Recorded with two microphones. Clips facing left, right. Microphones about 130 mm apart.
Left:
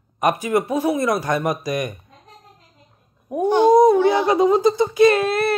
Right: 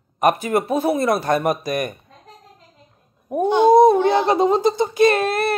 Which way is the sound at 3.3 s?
20° right (ahead or behind).